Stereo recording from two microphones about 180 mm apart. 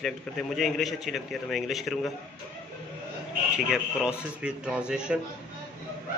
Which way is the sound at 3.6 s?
5° right (ahead or behind).